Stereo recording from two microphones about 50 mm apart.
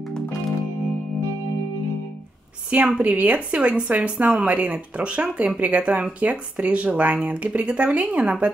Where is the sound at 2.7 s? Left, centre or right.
Right.